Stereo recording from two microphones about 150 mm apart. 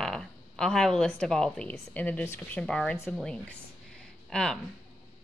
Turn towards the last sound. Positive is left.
turn(degrees=5)  # may be behind; listen again after turning